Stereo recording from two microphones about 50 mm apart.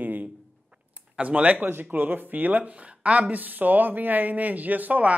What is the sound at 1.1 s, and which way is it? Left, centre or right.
Speech, right.